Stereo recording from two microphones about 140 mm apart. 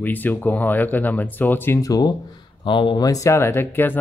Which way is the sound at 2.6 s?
35° left (ahead or behind).